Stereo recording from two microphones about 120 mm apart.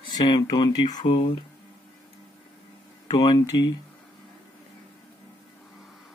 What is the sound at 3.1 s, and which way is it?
Speech, 40° left (ahead or behind).